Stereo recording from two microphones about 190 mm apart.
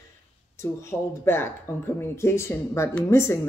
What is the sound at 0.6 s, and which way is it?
Speech, 15° left (ahead or behind).